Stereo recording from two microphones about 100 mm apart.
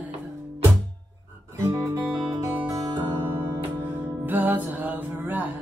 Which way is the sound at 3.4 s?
25° right (ahead or behind).